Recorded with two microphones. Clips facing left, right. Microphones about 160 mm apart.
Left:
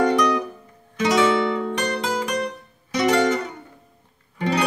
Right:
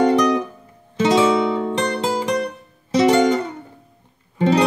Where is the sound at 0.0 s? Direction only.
25° right (ahead or behind).